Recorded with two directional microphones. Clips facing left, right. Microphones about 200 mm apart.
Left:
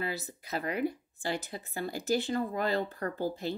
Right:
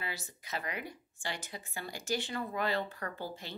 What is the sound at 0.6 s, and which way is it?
Speech, 35° left (ahead or behind).